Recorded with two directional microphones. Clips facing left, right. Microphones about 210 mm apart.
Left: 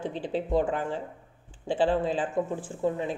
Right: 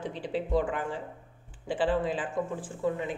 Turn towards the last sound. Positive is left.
turn(degrees=30)  # may be behind; listen again after turning